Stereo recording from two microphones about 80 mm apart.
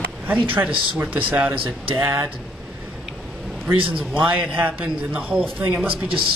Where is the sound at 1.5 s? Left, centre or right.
Right.